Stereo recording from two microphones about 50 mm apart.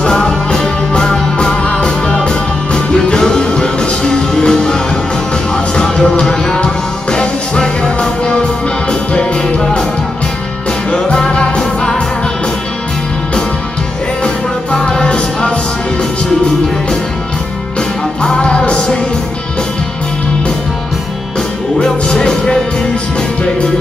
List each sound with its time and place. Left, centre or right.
0.0 s music: centre
10.9 s music: centre
14.2 s music: centre
18.2 s music: centre
22.0 s music: centre